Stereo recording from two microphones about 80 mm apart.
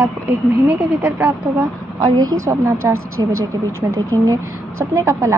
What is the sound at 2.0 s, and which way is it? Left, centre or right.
Speech, right.